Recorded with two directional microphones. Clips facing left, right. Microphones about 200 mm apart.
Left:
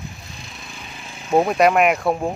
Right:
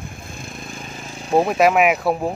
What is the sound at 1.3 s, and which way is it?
Speech, centre (ahead or behind).